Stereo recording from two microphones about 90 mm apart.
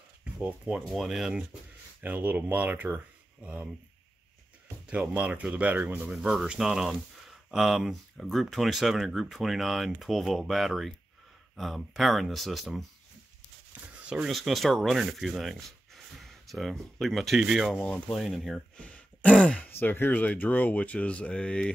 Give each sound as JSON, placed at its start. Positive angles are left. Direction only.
{"t": 0.7, "sound": "speech", "side_deg": -5}
{"t": 2.0, "sound": "speech", "side_deg": -20}
{"t": 5.1, "sound": "speech", "side_deg": -10}
{"t": 6.1, "sound": "speech", "side_deg": -5}
{"t": 14.0, "sound": "speech", "side_deg": -5}
{"t": 17.7, "sound": "speech", "side_deg": 10}
{"t": 18.8, "sound": "grunt", "side_deg": 10}
{"t": 19.7, "sound": "speech", "side_deg": 25}